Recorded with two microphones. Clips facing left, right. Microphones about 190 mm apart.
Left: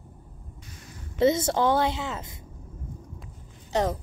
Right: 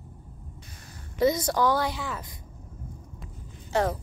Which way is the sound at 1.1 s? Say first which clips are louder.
Left 2 dB; 25° left (ahead or behind).